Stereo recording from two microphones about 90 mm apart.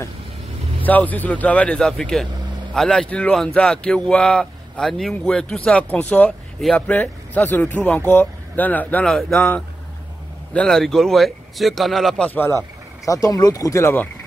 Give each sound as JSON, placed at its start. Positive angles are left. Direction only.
{"t": 0.8, "sound": "speech", "side_deg": 20}
{"t": 10.5, "sound": "speech", "side_deg": 5}
{"t": 12.3, "sound": "speech", "side_deg": 20}
{"t": 13.0, "sound": "speech", "side_deg": 40}